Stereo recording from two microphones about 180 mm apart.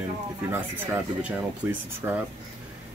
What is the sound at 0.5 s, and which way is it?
Speech, 10° right (ahead or behind).